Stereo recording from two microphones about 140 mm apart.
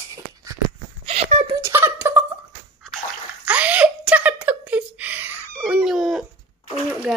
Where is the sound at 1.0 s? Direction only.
50° right (ahead or behind).